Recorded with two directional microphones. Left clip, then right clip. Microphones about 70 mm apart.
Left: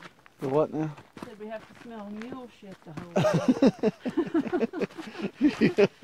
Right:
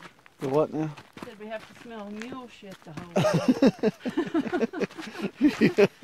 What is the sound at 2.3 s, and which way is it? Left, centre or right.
Speech, right.